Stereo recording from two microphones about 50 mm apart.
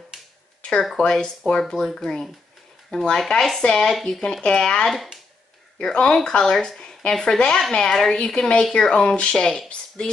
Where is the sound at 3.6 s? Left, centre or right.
Left.